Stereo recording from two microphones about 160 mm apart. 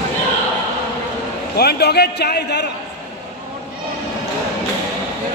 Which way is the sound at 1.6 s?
85° left.